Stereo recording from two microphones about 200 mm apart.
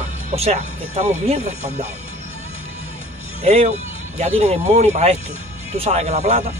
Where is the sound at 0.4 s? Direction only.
30° right (ahead or behind).